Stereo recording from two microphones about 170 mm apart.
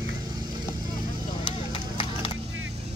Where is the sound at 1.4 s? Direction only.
30° left (ahead or behind).